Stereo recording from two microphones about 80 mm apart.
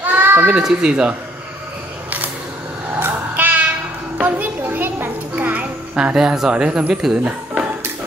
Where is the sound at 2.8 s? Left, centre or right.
Right.